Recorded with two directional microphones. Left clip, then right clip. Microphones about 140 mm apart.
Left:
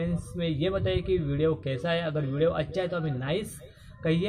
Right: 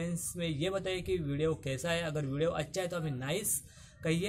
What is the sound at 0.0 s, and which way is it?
A man's voice, 15° right (ahead or behind).